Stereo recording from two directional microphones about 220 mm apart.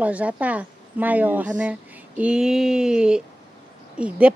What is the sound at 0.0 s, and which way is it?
Speech, 5° right (ahead or behind).